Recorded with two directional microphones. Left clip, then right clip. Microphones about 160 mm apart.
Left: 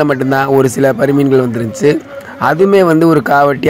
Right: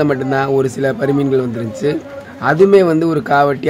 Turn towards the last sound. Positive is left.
turn(degrees=35)  # may be behind; listen again after turning